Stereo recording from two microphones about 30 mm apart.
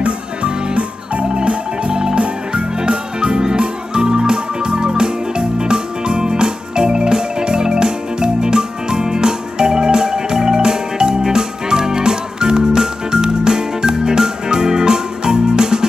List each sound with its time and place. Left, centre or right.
1.3 s music: right